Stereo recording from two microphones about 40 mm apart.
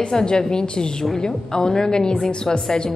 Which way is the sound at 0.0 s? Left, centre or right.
Centre.